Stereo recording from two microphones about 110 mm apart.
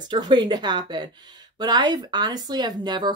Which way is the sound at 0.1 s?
45° right (ahead or behind).